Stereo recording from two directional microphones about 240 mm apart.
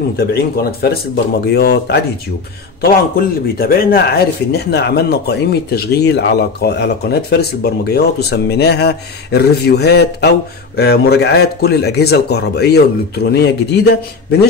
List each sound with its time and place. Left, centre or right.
0.2 s speech: left